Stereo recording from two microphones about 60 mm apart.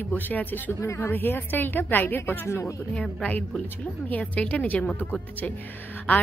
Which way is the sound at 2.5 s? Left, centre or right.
Left.